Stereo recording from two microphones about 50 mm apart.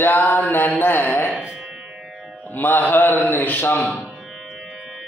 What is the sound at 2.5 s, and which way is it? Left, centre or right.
Mantra, left.